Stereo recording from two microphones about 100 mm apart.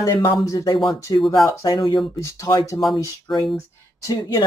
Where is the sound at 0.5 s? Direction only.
30° left (ahead or behind).